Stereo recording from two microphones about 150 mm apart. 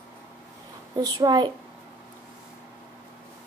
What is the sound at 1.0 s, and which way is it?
Speech, 25° right (ahead or behind).